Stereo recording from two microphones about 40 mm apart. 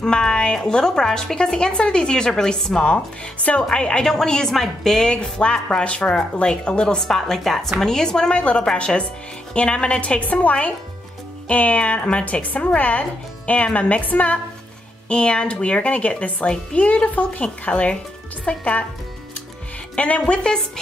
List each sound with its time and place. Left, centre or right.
0.0 s a woman's voice: centre
5.0 s a woman's voice: left
7.0 s a woman's voice: centre
8.4 s a woman's voice: left
12.3 s speech: left
15.0 s a woman's voice: left
18.4 s a woman's voice: left
20.0 s a woman's voice: left